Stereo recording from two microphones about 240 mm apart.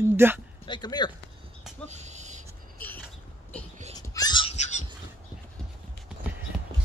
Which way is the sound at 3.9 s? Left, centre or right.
Centre.